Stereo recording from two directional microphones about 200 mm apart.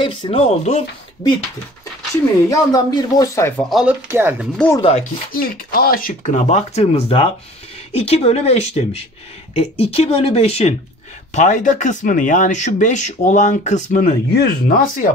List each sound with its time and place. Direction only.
0.0 s speech: 25° left (ahead or behind)
2.5 s speech: 20° left (ahead or behind)
3.7 s speech: 10° right (ahead or behind)
4.6 s speech: 10° left (ahead or behind)
5.3 s speech: 45° left (ahead or behind)